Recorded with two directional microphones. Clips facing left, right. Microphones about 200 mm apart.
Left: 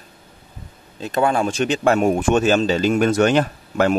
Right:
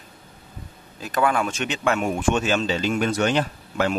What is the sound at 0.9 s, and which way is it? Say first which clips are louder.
A man's voice: left 3 dB; 25° left (ahead or behind).